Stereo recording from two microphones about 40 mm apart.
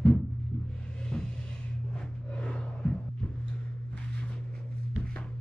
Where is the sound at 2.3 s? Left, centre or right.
Left.